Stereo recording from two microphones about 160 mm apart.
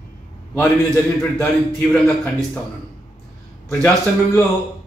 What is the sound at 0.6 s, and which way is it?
A man's voice, 10° left (ahead or behind).